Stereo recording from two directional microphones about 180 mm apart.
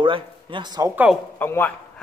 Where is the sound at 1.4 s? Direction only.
10° left (ahead or behind).